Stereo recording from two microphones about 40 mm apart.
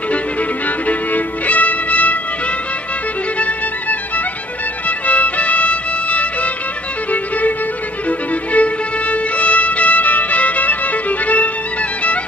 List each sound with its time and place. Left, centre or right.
0.8 s music: left
4.8 s music: left
8.5 s music: left